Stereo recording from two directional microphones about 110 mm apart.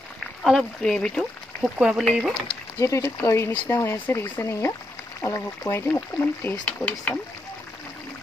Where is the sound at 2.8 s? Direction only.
25° left (ahead or behind).